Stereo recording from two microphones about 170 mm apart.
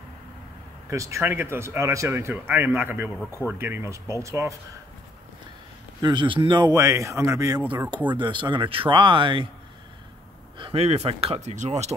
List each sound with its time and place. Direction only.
0.8 s speech: 20° right (ahead or behind)
5.9 s speech: 25° right (ahead or behind)
10.6 s speech: 35° right (ahead or behind)
11.4 s speech: 45° right (ahead or behind)